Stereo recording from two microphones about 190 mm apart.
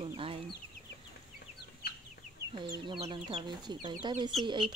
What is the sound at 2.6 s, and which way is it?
Speech, 25° right (ahead or behind).